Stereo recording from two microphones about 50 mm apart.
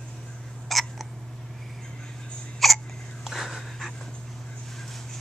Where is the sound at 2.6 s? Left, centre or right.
Centre.